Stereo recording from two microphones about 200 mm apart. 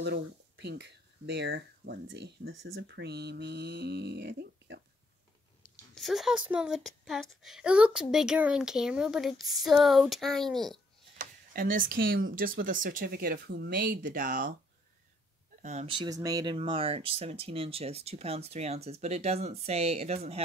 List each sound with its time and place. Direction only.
0.0 s speech: 55° right (ahead or behind)
5.9 s speech: centre (ahead or behind)
11.1 s speech: 45° right (ahead or behind)
15.6 s speech: 35° right (ahead or behind)
16.0 s speech: 20° right (ahead or behind)